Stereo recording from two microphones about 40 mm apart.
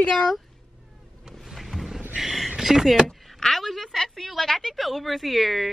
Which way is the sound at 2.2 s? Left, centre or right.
Centre.